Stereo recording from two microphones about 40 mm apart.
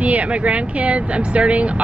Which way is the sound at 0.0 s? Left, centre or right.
Right.